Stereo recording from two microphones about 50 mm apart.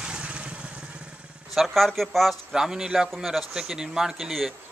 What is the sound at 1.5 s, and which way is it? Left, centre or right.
Speech, centre.